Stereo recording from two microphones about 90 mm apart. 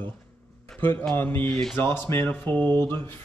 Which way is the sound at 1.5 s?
5° left (ahead or behind).